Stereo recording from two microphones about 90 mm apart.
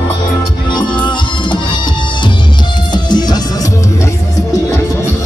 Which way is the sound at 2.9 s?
50° left (ahead or behind).